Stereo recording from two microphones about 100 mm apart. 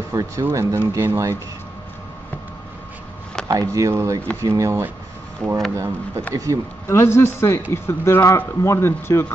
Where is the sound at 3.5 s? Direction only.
35° right (ahead or behind).